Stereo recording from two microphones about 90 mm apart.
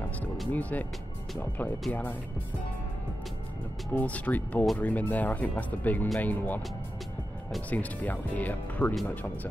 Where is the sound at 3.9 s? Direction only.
15° left (ahead or behind).